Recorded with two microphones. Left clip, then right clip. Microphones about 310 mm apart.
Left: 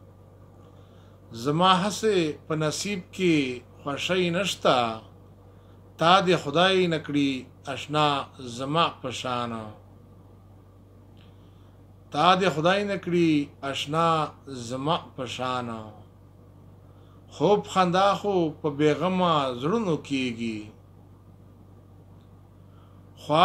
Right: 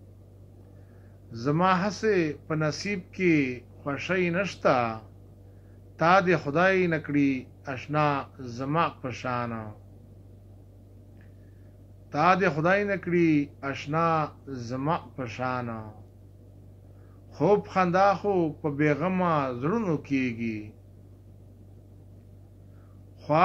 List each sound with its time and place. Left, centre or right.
1.4 s a man's voice: left
5.9 s a man's voice: left
12.1 s a man's voice: left
17.3 s a man's voice: left